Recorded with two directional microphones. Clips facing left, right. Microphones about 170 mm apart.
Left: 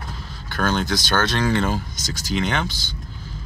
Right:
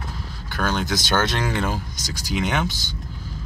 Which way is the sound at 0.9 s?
20° right (ahead or behind).